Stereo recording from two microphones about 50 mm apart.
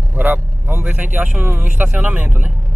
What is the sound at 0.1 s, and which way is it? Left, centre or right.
A man's voice, right.